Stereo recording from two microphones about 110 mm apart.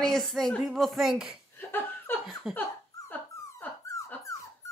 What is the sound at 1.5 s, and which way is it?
Laughter, 20° left (ahead or behind).